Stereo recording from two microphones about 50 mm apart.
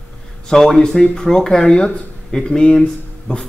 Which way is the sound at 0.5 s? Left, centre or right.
Centre.